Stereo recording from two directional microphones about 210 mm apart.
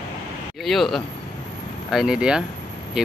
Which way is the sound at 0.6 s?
Centre (ahead or behind).